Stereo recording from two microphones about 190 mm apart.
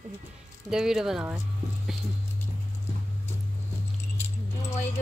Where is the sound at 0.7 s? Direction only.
5° right (ahead or behind).